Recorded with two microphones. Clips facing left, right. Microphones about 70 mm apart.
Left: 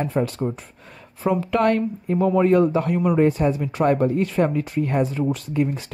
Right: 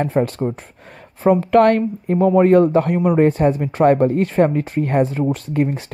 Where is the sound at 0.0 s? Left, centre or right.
Right.